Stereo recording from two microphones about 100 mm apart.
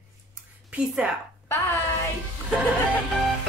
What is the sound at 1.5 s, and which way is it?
Speech, 25° left (ahead or behind).